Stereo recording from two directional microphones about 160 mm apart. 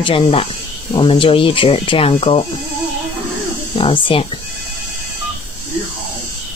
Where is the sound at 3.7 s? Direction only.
35° left (ahead or behind).